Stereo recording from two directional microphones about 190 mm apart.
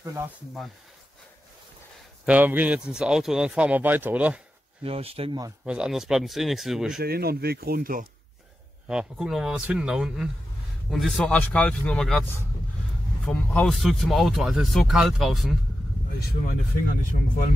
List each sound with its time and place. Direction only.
2.2 s speech: 10° right (ahead or behind)
4.8 s speech: 30° right (ahead or behind)
5.7 s speech: 5° right (ahead or behind)
7.0 s speech: 55° right (ahead or behind)
8.8 s speech: 5° right (ahead or behind)
16.2 s speech: 55° left (ahead or behind)